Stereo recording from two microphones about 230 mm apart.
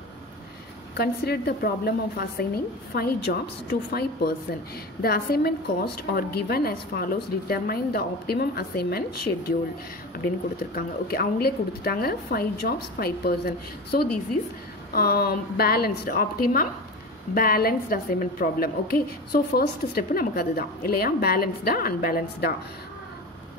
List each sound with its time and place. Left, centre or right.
0.9 s a woman's voice: left
10.2 s a woman's voice: left
17.3 s a woman's voice: left